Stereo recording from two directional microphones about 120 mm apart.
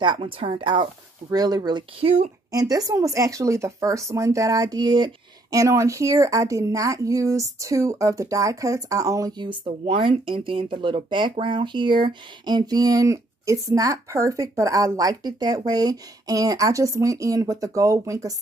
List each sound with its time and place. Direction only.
0.0 s speech: 45° right (ahead or behind)
1.3 s speech: 35° right (ahead or behind)
2.0 s speech: 55° right (ahead or behind)
2.5 s speech: 30° right (ahead or behind)
9.4 s speech: 45° right (ahead or behind); by 18.3 s 30° right (ahead or behind)